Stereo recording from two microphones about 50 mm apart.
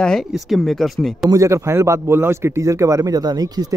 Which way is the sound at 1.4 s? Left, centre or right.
Right.